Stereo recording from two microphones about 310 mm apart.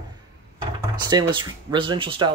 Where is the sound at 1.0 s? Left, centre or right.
Centre.